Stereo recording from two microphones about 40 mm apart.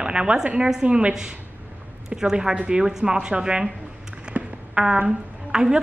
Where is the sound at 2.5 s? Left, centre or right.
Right.